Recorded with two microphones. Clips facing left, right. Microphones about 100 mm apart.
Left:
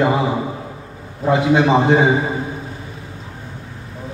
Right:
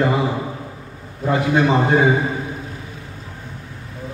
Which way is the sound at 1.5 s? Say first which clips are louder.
Left 2 dB; 20° left (ahead or behind).